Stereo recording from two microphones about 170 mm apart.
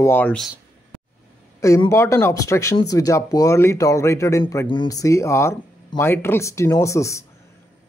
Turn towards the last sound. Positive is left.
turn(degrees=20)  # may be behind; listen again after turning